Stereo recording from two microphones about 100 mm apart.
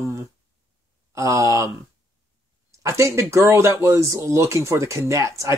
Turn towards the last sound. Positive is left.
turn(degrees=-30)  # may be behind; listen again after turning